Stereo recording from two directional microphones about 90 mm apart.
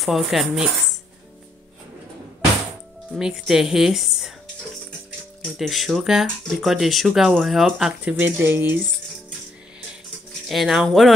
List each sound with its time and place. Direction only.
0.0 s speech: centre (ahead or behind)
3.1 s speech: 5° right (ahead or behind)
5.4 s speech: centre (ahead or behind)
8.0 s speech: 15° right (ahead or behind)
10.5 s speech: centre (ahead or behind)